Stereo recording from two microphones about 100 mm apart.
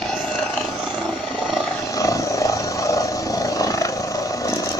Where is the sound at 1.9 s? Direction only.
35° left (ahead or behind).